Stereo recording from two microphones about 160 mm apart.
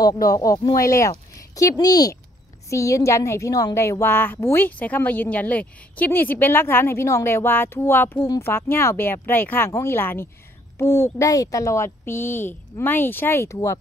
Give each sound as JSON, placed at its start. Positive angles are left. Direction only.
{"t": 0.0, "sound": "a woman's voice", "side_deg": 25}